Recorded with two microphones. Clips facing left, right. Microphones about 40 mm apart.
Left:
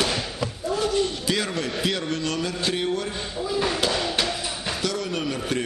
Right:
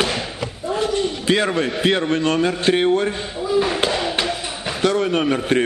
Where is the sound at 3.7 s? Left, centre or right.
Right.